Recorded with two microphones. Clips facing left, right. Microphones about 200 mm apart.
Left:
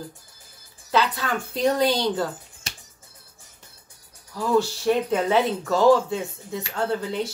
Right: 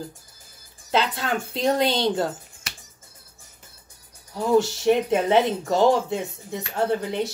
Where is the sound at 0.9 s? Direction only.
25° right (ahead or behind).